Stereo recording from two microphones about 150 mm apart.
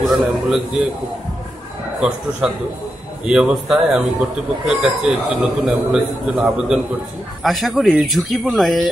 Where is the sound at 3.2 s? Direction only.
5° right (ahead or behind).